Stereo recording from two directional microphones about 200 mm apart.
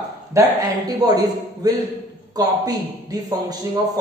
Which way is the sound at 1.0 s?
20° right (ahead or behind).